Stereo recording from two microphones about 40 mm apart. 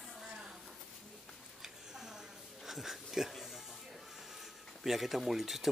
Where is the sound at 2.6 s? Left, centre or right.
Centre.